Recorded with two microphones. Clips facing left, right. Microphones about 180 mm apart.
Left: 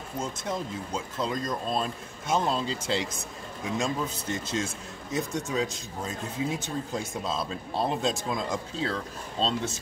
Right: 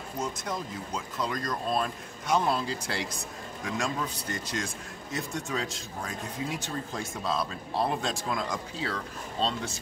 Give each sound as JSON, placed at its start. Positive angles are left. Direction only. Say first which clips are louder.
{"t": 0.2, "sound": "speech", "louder": "left 1 dB", "side_deg": 25}